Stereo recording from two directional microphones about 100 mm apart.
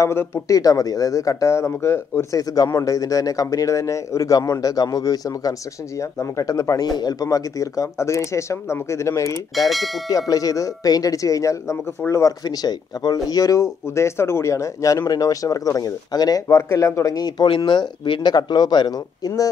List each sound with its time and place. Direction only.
0.0 s speech: 25° left (ahead or behind)
0.6 s speech: 35° left (ahead or behind)